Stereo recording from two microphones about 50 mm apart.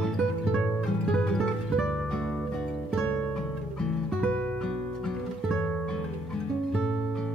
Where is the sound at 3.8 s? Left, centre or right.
Centre.